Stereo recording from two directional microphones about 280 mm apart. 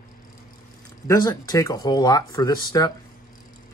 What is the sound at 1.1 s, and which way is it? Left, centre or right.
Speech, centre.